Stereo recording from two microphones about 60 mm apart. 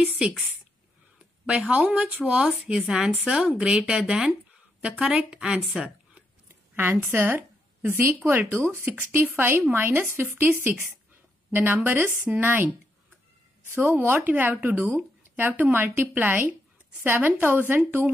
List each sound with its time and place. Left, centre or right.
0.0 s a woman's voice: right
1.4 s speech: centre
2.6 s a woman's voice: centre
6.7 s a woman's voice: right
11.5 s a woman's voice: right